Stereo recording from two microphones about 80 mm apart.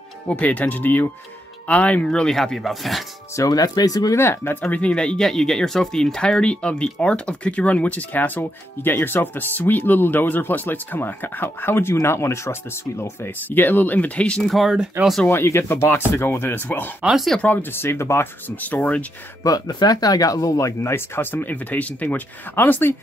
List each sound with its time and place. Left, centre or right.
0.3 s speech: centre
3.3 s speech: left
4.2 s speech: left; by 14.5 s centre
14.5 s speech: centre
15.2 s speech: left
17.0 s speech: centre
17.4 s speech: left
19.4 s speech: left